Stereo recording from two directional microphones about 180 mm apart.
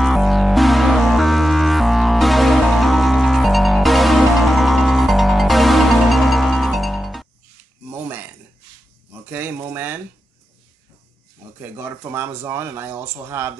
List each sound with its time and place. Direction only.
0.0 s music: centre (ahead or behind)
7.9 s a sound: 10° right (ahead or behind)
11.6 s speech: 10° right (ahead or behind)